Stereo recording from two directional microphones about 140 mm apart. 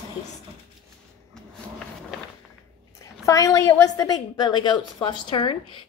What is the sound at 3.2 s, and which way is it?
A woman's voice, 25° left (ahead or behind).